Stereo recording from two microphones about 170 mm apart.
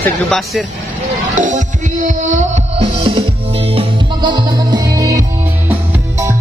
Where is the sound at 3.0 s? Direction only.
30° right (ahead or behind).